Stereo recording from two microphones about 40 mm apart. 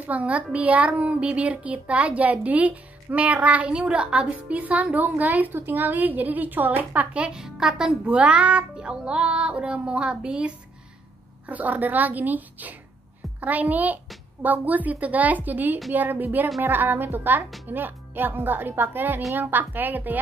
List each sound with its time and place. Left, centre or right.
0.0 s a child's voice: right
4.4 s a child's voice: right
5.6 s a woman's voice: right
7.6 s a woman's voice: centre
8.0 s child singing: right
11.4 s a woman's voice: right